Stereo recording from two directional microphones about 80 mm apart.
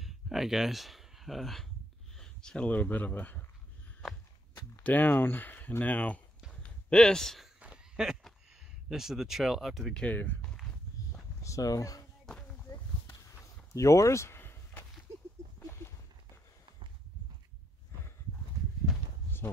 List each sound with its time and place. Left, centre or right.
0.0 s speech: centre; by 3.4 s left
4.8 s speech: left; by 7.4 s centre
7.6 s a sound: centre
8.8 s speech: centre
9.9 s speech: left
10.4 s walk: centre
11.4 s speech: left
12.6 s a sound: left
18.9 s a sound: centre